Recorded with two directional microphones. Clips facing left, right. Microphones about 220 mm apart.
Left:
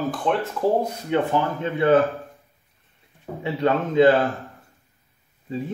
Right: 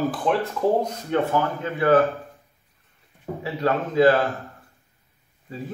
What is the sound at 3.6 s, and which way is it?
Speech, 25° left (ahead or behind).